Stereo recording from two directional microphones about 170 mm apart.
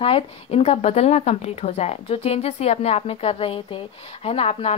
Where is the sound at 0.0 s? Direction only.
35° left (ahead or behind).